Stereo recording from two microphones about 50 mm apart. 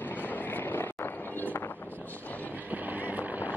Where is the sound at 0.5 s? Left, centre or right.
Left.